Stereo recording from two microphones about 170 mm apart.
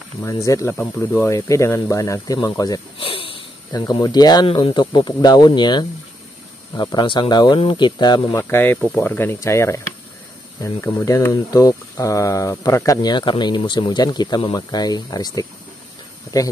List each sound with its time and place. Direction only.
0.2 s speech: 20° left (ahead or behind)
3.0 s snort: 30° left (ahead or behind)
3.8 s speech: 25° left (ahead or behind)